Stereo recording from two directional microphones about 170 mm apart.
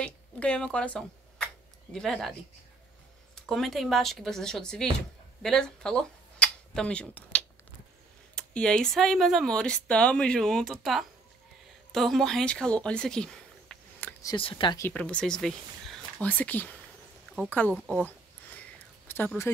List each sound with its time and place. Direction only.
0.0 s a sound: 5° left (ahead or behind)
3.3 s speech: centre (ahead or behind)
14.3 s speech: 30° left (ahead or behind)
14.8 s speech: 10° left (ahead or behind)
17.3 s a sound: 10° left (ahead or behind)
19.0 s speech: 10° left (ahead or behind)